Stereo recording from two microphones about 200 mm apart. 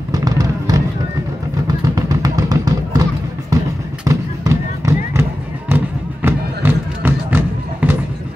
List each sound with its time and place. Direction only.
0.1 s a sound: 20° right (ahead or behind)
4.0 s music: 15° right (ahead or behind)
6.2 s music: 10° right (ahead or behind)